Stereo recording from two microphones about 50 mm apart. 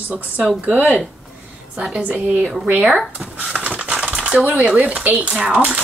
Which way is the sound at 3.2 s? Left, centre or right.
Right.